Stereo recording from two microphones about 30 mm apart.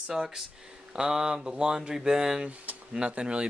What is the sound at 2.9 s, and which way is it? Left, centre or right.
Speech, right.